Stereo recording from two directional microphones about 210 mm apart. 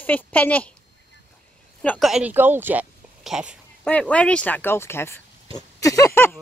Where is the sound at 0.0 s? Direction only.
10° left (ahead or behind).